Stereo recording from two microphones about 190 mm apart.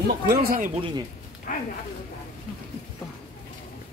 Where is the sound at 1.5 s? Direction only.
45° left (ahead or behind).